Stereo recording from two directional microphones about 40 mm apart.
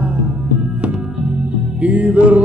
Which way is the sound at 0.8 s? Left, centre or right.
Right.